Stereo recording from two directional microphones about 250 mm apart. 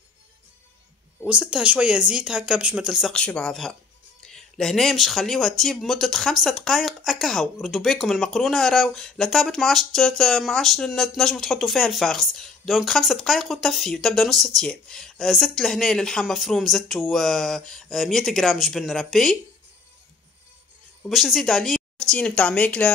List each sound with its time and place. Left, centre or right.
1.2 s speech: centre
21.1 s speech: centre